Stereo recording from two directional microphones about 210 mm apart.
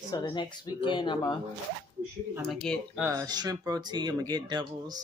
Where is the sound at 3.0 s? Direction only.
20° right (ahead or behind).